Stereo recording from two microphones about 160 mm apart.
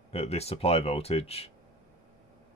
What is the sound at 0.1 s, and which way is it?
Speech, 40° left (ahead or behind).